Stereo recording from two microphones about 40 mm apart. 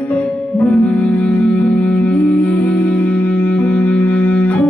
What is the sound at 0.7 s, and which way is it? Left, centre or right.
Music, left.